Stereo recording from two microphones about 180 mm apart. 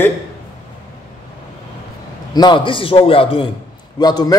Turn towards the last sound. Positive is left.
turn(degrees=20)  # may be behind; listen again after turning